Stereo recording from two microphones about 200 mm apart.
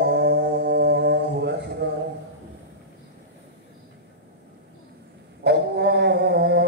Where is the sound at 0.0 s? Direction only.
55° right (ahead or behind).